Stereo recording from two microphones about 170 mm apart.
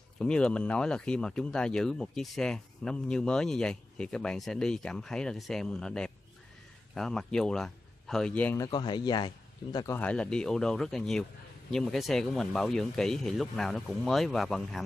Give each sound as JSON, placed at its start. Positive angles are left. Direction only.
{"t": 0.2, "sound": "speech", "side_deg": 5}
{"t": 8.6, "sound": "speech", "side_deg": 25}
{"t": 9.9, "sound": "speech", "side_deg": 5}